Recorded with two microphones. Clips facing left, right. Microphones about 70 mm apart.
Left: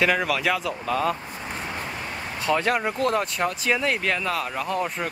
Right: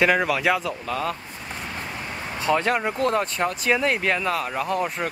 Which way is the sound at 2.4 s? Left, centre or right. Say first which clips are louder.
Right 1 dB; centre.